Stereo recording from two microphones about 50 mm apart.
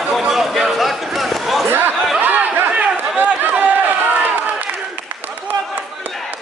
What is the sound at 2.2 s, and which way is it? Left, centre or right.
Chatter, right.